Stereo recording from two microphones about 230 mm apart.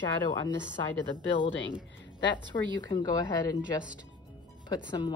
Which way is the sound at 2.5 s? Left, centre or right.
Centre.